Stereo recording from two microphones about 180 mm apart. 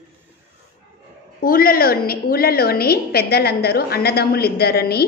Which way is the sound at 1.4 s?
55° left (ahead or behind).